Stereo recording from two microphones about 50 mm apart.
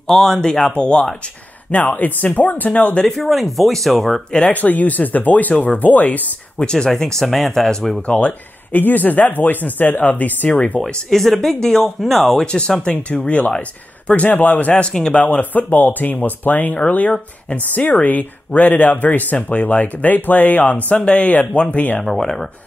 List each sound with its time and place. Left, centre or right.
0.0 s speech: centre
0.5 s speech: left
3.1 s speech: centre
4.5 s speech: left
6.6 s speech: centre
8.1 s speech: left
11.1 s speech: centre
12.4 s speech: centre
13.6 s speech: left
14.8 s speech: centre
15.2 s speech: left
20.9 s speech: left
22.0 s speech: centre